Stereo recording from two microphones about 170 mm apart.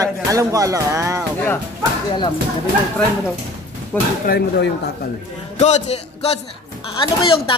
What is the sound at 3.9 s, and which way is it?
Speech, 10° left (ahead or behind).